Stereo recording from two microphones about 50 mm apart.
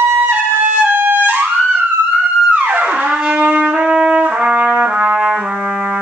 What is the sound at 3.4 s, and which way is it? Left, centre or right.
Trumpet, right.